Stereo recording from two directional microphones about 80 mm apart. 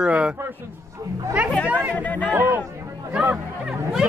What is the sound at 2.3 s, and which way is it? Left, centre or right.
Speech, right.